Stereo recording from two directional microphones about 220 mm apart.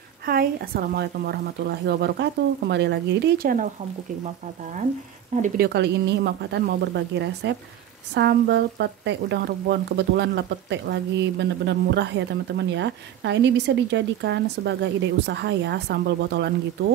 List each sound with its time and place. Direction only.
0.2 s speech: 45° right (ahead or behind)
5.3 s speech: 35° right (ahead or behind)
5.7 s speech: 50° right (ahead or behind)